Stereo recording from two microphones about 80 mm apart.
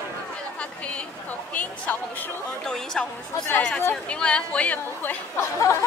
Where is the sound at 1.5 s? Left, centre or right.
Centre.